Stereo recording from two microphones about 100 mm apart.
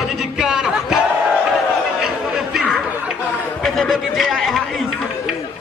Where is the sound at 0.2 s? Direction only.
5° right (ahead or behind).